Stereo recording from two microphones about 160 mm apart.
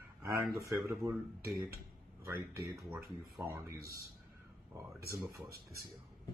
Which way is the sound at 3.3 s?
20° right (ahead or behind).